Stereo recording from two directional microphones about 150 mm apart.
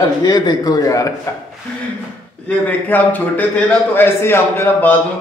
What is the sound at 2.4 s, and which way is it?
A man's voice, 10° left (ahead or behind).